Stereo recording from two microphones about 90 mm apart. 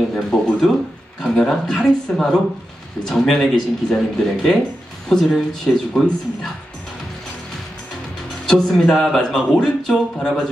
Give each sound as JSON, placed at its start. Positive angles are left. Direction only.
{"t": 0.1, "sound": "a man's voice", "side_deg": 5}
{"t": 8.5, "sound": "a man's voice", "side_deg": 5}